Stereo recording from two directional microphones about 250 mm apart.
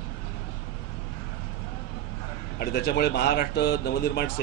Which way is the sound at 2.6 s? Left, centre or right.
Left.